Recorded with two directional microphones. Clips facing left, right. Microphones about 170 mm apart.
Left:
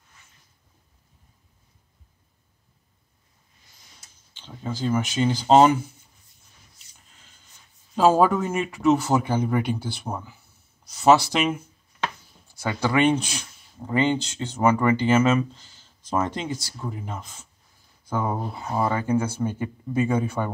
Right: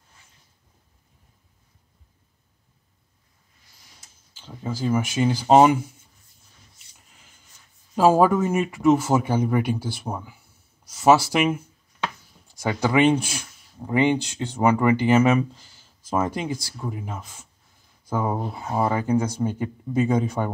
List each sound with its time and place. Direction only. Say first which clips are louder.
4.3 s speech: right 1 dB; 5° right (ahead or behind)
7.9 s speech: right 1 dB; 10° right (ahead or behind)